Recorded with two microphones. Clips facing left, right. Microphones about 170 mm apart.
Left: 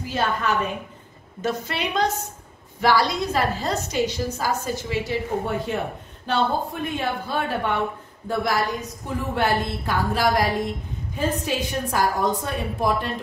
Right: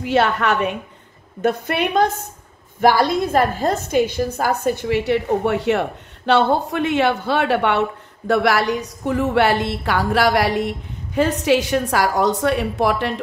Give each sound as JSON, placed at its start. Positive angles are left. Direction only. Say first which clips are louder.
{"t": 0.0, "sound": "a woman's voice", "louder": "right 7 dB", "side_deg": -70}
{"t": 1.4, "sound": "a woman's voice", "louder": "right 7 dB", "side_deg": -55}